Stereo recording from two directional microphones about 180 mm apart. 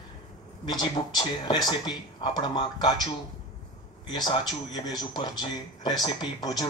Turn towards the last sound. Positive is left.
turn(degrees=20)  # may be behind; listen again after turning